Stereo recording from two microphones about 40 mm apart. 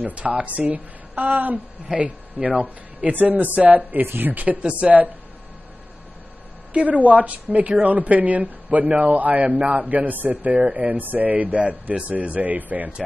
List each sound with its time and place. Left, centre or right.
0.0 s a man's voice: right
1.9 s speech: centre
2.4 s a man's voice: right
3.2 s a man's voice: right
6.7 s a man's voice: right